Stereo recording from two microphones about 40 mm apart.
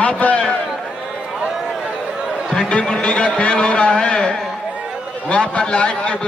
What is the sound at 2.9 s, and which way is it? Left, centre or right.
A man's voice, left.